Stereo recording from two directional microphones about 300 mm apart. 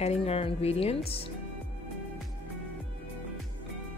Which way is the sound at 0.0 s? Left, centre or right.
Centre.